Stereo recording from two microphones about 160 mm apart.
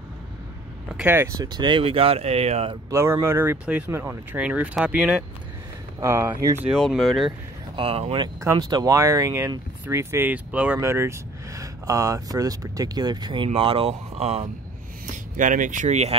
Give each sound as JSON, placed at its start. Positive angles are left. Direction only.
{"t": 0.9, "sound": "speech", "side_deg": -15}
{"t": 1.4, "sound": "speech", "side_deg": -25}
{"t": 2.9, "sound": "speech", "side_deg": -15}
{"t": 6.7, "sound": "speech", "side_deg": 0}
{"t": 7.2, "sound": "speech", "side_deg": -35}
{"t": 8.4, "sound": "speech", "side_deg": -20}
{"t": 15.3, "sound": "speech", "side_deg": -55}